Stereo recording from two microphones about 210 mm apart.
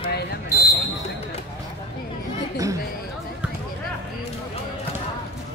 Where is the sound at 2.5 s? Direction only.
15° right (ahead or behind).